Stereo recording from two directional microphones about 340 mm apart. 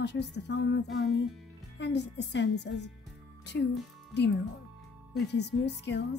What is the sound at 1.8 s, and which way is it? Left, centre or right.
Speech, left.